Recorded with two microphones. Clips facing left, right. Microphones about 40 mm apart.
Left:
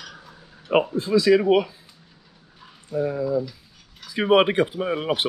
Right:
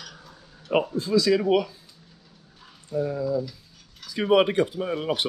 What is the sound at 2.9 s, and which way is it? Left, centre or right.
Speech, centre.